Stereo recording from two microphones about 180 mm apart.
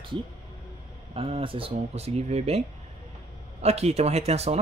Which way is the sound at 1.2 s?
30° right (ahead or behind).